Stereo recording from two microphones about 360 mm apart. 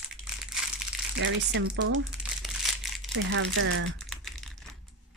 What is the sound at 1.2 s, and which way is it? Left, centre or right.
Speech, right.